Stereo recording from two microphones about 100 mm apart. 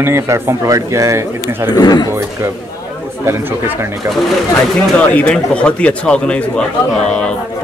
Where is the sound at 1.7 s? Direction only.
45° left (ahead or behind).